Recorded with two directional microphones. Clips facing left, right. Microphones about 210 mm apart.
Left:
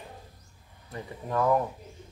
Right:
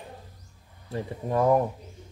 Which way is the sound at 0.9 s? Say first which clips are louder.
Right 5 dB; 30° right (ahead or behind).